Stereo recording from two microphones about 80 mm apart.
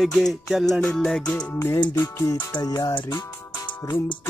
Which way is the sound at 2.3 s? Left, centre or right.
Left.